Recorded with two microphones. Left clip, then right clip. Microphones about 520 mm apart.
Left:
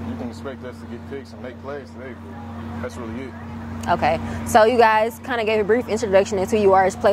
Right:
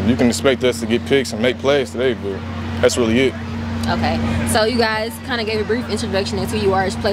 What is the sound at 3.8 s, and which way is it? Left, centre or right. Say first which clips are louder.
Speech: left 1 dB; left.